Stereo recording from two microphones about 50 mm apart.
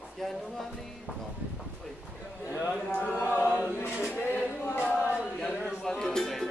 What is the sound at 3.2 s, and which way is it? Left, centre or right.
Chant, left.